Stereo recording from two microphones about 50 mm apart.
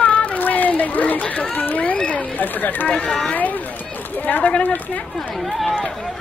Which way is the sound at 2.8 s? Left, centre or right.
Left.